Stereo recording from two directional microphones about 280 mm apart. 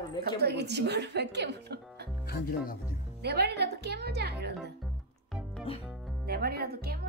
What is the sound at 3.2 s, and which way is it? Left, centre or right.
Speech, right.